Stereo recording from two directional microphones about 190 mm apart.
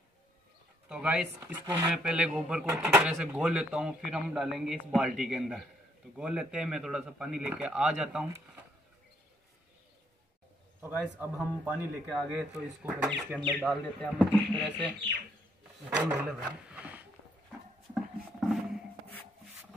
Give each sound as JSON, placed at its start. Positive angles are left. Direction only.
{"t": 0.8, "sound": "speech", "side_deg": -5}
{"t": 1.4, "sound": "speech", "side_deg": -20}
{"t": 2.0, "sound": "speech", "side_deg": -5}
{"t": 10.8, "sound": "speech", "side_deg": -10}
{"t": 13.4, "sound": "speech", "side_deg": 5}
{"t": 16.1, "sound": "speech", "side_deg": -5}
{"t": 18.4, "sound": "a sound", "side_deg": 0}